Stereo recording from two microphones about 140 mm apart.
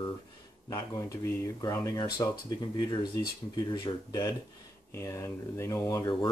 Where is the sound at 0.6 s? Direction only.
25° left (ahead or behind).